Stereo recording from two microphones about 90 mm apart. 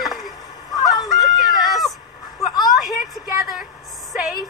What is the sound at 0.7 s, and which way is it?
Fowl, 45° left (ahead or behind).